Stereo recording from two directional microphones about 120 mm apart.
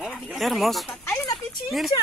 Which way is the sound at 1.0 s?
20° left (ahead or behind).